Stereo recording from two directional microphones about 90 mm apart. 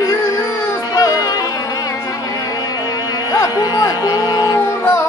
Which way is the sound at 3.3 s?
45° left (ahead or behind).